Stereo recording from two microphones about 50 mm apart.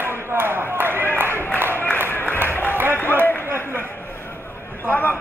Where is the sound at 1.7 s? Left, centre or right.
Left.